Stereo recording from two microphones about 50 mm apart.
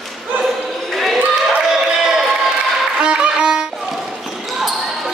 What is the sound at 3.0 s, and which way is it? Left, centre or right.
Violin, centre.